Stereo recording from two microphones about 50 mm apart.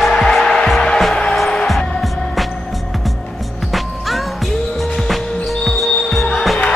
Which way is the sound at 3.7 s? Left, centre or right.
Centre.